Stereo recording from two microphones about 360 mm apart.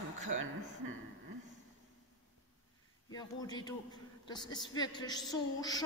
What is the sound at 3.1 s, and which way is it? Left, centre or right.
A woman's voice, centre.